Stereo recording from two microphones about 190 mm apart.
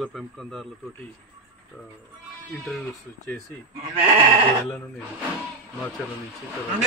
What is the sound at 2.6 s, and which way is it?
Speech, centre (ahead or behind).